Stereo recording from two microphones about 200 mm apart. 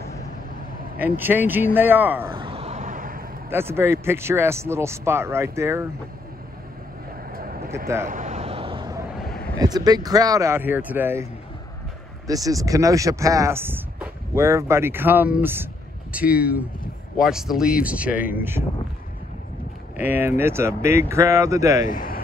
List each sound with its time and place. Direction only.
0.9 s speech: 10° right (ahead or behind)
2.3 s vehicle: 25° right (ahead or behind); by 3.3 s 45° right (ahead or behind)
3.4 s speech: 10° right (ahead or behind)
7.3 s a sound: 50° right (ahead or behind)
8.1 s vehicle: 35° right (ahead or behind)
9.6 s speech: 20° right (ahead or behind)
12.3 s speech: 15° right (ahead or behind)
20.0 s speech: 10° right (ahead or behind)
21.8 s a man's voice: 45° left (ahead or behind)